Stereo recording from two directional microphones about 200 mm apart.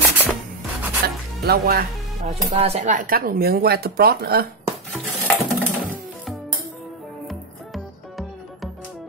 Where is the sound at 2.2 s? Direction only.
30° right (ahead or behind); by 4.4 s 50° right (ahead or behind).